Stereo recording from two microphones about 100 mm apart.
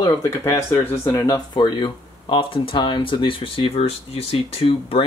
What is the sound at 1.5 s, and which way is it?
Speech, 50° left (ahead or behind).